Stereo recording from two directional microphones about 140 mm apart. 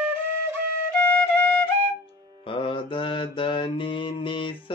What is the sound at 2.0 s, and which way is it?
Mantra, 40° left (ahead or behind).